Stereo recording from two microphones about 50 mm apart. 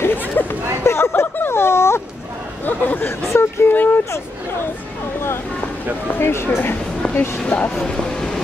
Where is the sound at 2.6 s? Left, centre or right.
Left.